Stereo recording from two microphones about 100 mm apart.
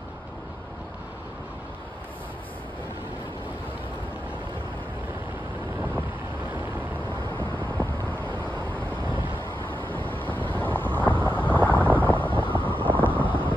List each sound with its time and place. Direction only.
7.3 s vehicle: 20° left (ahead or behind)
12.0 s boat: 15° left (ahead or behind)
12.9 s a sound: 15° left (ahead or behind)